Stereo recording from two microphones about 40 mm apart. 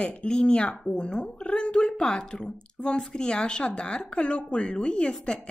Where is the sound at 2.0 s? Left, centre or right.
Centre.